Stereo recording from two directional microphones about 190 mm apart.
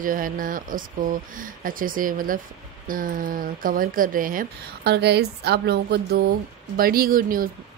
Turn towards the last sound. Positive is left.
turn(degrees=-50)  # may be behind; listen again after turning